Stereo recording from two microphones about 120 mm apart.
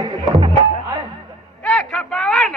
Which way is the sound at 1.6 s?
10° left (ahead or behind).